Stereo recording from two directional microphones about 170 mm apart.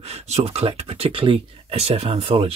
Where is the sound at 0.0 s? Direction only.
40° right (ahead or behind).